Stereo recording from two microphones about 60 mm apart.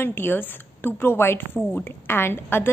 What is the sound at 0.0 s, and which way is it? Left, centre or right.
A woman's voice, left.